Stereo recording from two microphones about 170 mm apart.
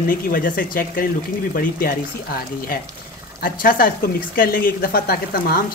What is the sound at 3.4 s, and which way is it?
Speech, 55° left (ahead or behind).